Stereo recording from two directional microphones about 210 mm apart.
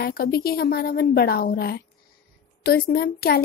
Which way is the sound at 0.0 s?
45° left (ahead or behind).